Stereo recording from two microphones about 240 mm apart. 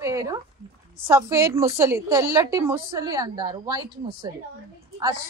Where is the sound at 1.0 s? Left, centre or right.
Centre.